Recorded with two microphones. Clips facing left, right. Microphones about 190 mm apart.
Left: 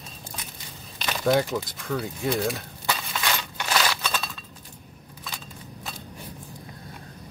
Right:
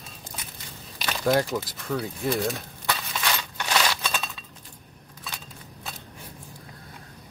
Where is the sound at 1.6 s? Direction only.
Centre (ahead or behind).